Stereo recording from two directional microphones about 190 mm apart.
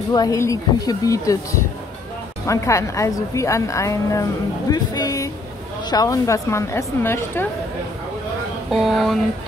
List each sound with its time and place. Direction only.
0.1 s a woman's voice: 20° left (ahead or behind)
2.4 s a woman's voice: 15° left (ahead or behind)
8.6 s speech: centre (ahead or behind)